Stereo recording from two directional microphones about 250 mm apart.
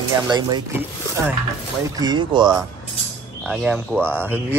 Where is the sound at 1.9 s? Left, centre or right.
Centre.